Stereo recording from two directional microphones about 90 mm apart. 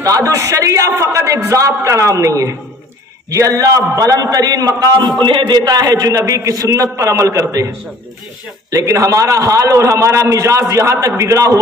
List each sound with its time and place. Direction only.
0.0 s a man's voice: 40° right (ahead or behind); by 5.6 s 65° right (ahead or behind)
5.6 s a man's voice: 45° right (ahead or behind)